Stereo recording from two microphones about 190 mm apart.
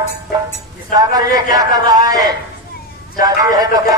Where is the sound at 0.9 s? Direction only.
20° right (ahead or behind).